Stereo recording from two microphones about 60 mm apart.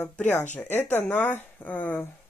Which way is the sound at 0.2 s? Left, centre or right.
Left.